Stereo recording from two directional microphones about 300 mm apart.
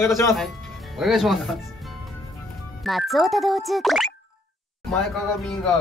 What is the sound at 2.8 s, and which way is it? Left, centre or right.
Speech, centre.